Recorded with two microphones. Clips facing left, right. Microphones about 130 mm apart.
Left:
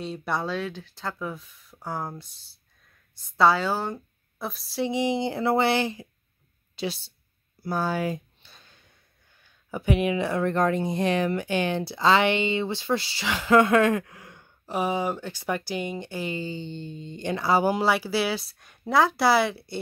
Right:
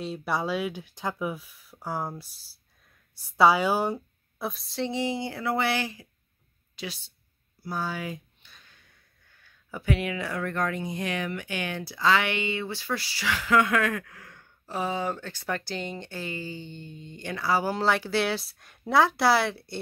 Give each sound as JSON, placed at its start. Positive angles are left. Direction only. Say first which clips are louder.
{"t": 0.0, "sound": "a woman's voice", "louder": "even", "side_deg": -5}
{"t": 4.4, "sound": "speech", "louder": "left 2 dB", "side_deg": 0}
{"t": 7.6, "sound": "a sound", "louder": "left 6 dB", "side_deg": 50}
{"t": 9.4, "sound": "speech", "louder": "left 5 dB", "side_deg": 20}